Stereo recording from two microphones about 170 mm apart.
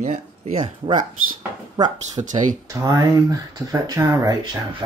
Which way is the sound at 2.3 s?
50° right (ahead or behind).